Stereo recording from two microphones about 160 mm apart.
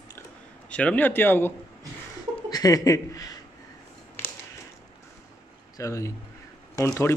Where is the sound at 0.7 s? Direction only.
10° left (ahead or behind).